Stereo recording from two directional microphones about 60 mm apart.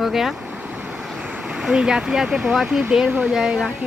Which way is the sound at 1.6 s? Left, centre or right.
Centre.